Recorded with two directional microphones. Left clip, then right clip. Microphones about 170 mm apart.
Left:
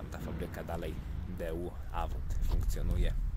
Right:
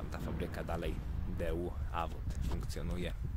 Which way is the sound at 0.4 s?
5° right (ahead or behind).